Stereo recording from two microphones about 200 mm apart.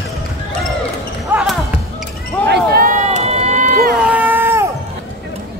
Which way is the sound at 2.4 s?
50° right (ahead or behind).